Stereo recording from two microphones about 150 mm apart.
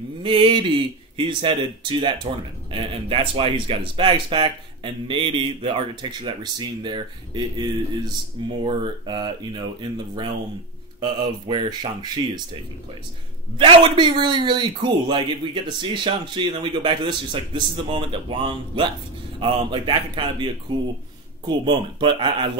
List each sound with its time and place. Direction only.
0.2 s speech: 30° right (ahead or behind)
13.6 s speech: 35° right (ahead or behind)
21.5 s speech: 30° right (ahead or behind)